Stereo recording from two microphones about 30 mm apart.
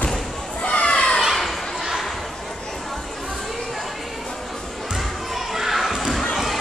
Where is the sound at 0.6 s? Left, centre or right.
Left.